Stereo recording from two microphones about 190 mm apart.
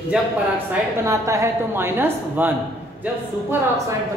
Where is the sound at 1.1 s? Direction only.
15° right (ahead or behind).